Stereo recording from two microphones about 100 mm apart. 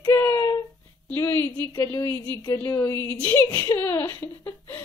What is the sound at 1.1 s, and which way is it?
Speech, 25° left (ahead or behind).